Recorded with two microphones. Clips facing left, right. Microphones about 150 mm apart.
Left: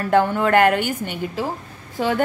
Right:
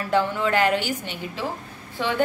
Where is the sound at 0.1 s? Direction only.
50° left (ahead or behind).